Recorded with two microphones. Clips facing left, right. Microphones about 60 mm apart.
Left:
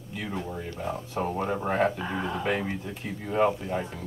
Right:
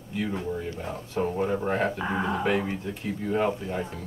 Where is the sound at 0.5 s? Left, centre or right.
Centre.